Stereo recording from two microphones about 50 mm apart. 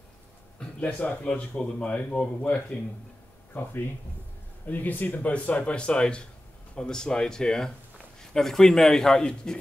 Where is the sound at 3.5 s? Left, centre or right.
Left; by 9.5 s centre.